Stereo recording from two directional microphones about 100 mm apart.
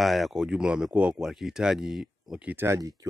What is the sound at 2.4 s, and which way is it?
Speech, 20° right (ahead or behind).